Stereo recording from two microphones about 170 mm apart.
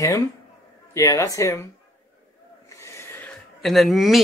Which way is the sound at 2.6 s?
15° left (ahead or behind).